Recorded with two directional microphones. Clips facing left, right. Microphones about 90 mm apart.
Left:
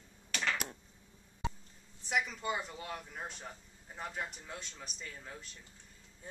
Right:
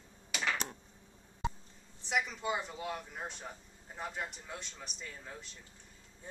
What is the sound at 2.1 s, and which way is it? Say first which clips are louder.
Speech: right 1 dB; centre (ahead or behind).